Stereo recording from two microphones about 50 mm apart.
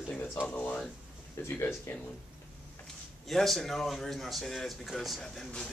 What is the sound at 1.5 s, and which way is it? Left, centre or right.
Speech, left.